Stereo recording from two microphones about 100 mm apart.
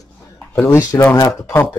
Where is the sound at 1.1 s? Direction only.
40° left (ahead or behind).